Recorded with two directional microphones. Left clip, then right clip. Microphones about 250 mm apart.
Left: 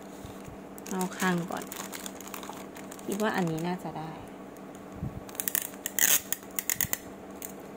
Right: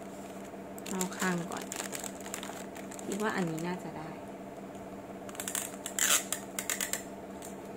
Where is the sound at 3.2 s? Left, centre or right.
Left.